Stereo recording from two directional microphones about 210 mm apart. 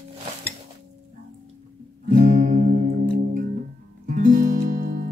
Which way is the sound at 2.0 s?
35° right (ahead or behind).